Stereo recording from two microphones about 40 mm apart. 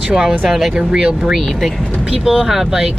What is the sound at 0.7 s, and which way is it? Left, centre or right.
Speech, right.